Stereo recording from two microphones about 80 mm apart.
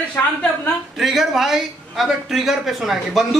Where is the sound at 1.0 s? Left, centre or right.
Centre.